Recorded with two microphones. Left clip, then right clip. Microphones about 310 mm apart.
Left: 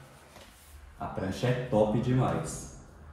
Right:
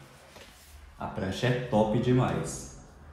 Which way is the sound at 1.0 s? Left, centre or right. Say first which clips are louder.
Right 1 dB; centre.